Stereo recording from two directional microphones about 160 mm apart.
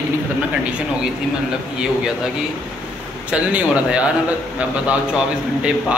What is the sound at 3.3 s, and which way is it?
A man's voice, 10° right (ahead or behind).